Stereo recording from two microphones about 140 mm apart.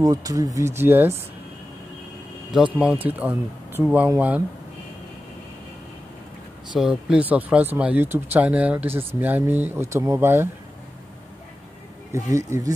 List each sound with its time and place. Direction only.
0.0 s speech: 25° right (ahead or behind)
2.5 s speech: 10° right (ahead or behind)
6.8 s speech: 5° right (ahead or behind)
12.1 s speech: 20° right (ahead or behind)